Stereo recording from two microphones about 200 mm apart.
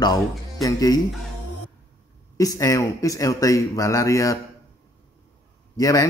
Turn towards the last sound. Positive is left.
turn(degrees=15)  # may be behind; listen again after turning